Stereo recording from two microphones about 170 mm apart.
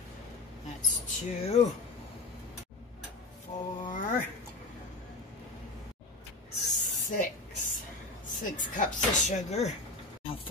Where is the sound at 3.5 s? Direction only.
45° left (ahead or behind).